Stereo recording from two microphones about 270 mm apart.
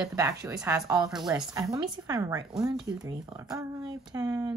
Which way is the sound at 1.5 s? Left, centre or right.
Centre.